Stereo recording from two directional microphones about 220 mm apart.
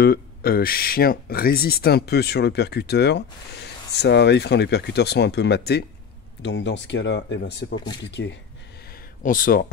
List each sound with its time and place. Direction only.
0.0 s speech: 45° left (ahead or behind)
7.7 s speech: 20° left (ahead or behind)
8.0 s speech: 50° left (ahead or behind)
9.2 s speech: 40° left (ahead or behind)